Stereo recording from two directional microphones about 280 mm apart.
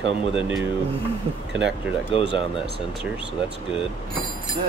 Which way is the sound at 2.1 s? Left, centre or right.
Centre.